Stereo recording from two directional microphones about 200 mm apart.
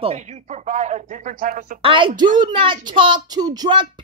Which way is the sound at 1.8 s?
25° right (ahead or behind).